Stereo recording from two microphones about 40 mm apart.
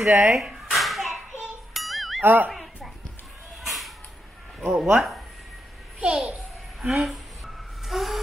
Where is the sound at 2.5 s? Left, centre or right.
Centre.